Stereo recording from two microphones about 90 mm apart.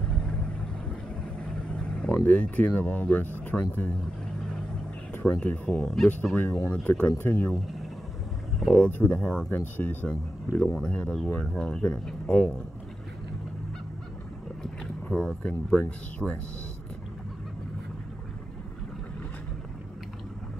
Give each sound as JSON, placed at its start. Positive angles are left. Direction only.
{"t": 0.1, "sound": "vehicle", "side_deg": 10}
{"t": 1.4, "sound": "vehicle", "side_deg": 10}
{"t": 3.4, "sound": "speech", "side_deg": 15}
{"t": 5.1, "sound": "speech", "side_deg": 15}
{"t": 8.7, "sound": "speech", "side_deg": 20}
{"t": 15.0, "sound": "speech", "side_deg": 10}